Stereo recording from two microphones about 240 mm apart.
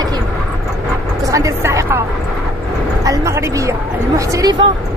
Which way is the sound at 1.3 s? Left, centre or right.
Centre.